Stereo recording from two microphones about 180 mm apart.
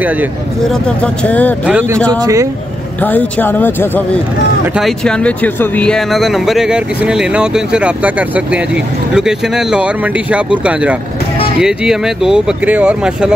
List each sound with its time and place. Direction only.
0.7 s speech: 5° left (ahead or behind)
1.7 s speech: 10° right (ahead or behind)
2.1 s speech: 20° right (ahead or behind)
3.0 s speech: 10° left (ahead or behind)